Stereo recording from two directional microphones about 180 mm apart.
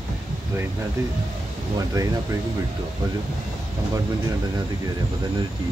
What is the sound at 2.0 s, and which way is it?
Speech, 20° right (ahead or behind).